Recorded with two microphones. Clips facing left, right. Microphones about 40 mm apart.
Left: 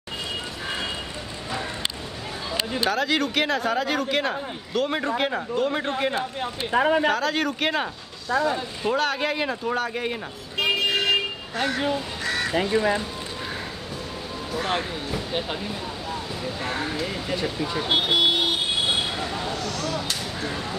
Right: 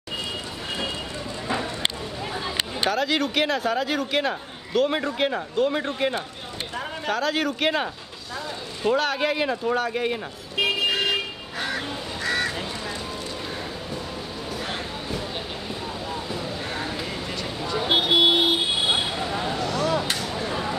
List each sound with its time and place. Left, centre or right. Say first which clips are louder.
2.9 s a man's voice: even; centre
6.7 s speech: left 14 dB; left
7.1 s a man's voice: left 1 dB; centre
8.3 s speech: left 11 dB; left
8.8 s a man's voice: right 2 dB; centre
10.6 s car alarm: even; centre
12.2 s crow: right 1 dB; centre
12.5 s speech: left 9 dB; left
16.6 s a sound: left 2 dB; centre
17.7 s vehicle: right 3 dB; centre; by 20.7 s right